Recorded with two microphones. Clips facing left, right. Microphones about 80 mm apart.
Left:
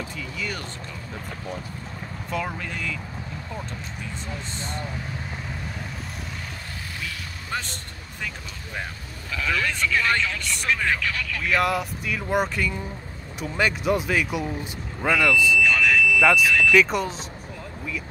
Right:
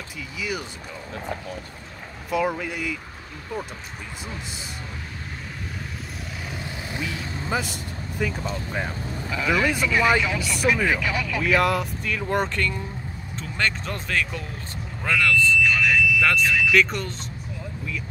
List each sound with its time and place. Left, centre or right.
0.4 s speech: centre
2.3 s speech: centre
7.0 s speech: centre
7.6 s speech: centre
9.3 s speech: centre
11.4 s speech: centre
15.6 s smoke detector: centre